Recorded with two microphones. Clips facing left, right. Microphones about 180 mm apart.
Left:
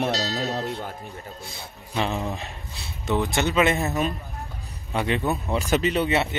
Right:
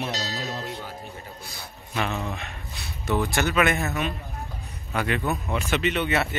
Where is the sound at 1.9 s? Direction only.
25° left (ahead or behind).